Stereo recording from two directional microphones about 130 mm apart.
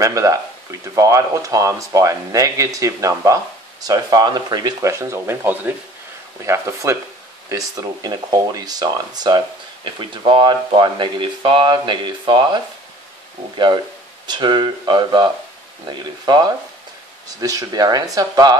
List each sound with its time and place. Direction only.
0.0 s speech: 25° right (ahead or behind)
14.2 s speech: 35° right (ahead or behind)